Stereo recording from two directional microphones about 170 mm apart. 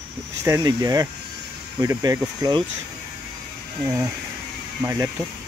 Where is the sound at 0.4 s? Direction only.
20° right (ahead or behind).